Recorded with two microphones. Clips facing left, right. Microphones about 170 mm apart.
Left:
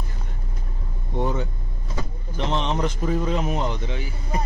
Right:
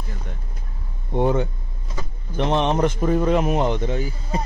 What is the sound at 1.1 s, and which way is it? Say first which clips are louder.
Vehicle: right 6 dB; 60° right (ahead or behind).